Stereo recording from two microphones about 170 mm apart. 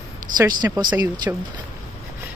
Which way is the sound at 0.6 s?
15° right (ahead or behind).